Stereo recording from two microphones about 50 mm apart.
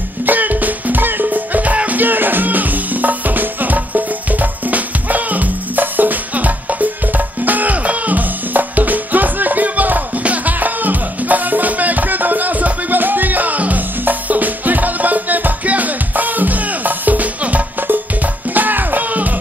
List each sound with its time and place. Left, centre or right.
0.2 s music: right